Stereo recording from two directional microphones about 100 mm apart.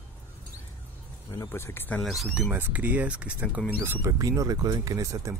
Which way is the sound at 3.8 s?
25° right (ahead or behind).